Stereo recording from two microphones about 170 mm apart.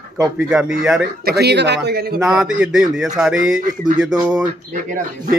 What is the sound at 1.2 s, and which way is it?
Speech, 75° right (ahead or behind).